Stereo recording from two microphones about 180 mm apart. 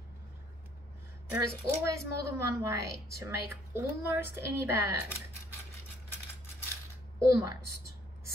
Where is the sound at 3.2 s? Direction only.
15° right (ahead or behind).